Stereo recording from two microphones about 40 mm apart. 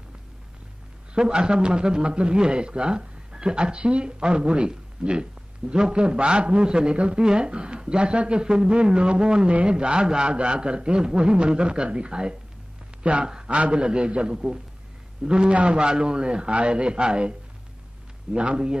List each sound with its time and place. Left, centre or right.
1.1 s a man's voice: right
13.5 s a man's voice: right
14.3 s a man's voice: centre